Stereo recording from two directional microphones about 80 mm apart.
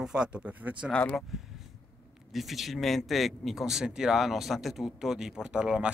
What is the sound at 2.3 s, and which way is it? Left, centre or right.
A man's voice, centre.